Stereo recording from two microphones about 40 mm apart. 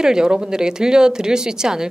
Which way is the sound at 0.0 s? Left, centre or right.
Centre.